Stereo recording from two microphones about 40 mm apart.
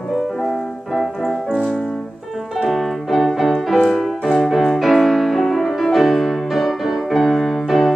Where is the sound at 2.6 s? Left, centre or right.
Centre.